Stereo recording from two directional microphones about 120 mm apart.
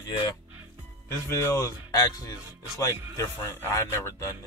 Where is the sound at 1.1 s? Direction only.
25° left (ahead or behind).